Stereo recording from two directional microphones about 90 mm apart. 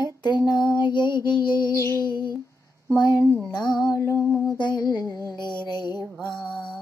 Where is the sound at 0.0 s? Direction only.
55° left (ahead or behind).